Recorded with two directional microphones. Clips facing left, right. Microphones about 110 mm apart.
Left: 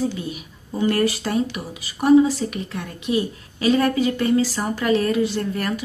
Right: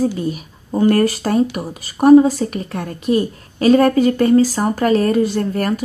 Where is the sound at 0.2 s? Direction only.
40° right (ahead or behind).